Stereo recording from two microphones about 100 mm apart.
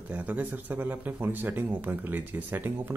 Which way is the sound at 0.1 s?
15° right (ahead or behind).